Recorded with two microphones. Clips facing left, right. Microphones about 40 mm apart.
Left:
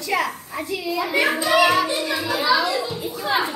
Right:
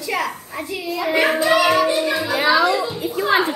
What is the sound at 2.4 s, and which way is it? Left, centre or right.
A woman's voice, right.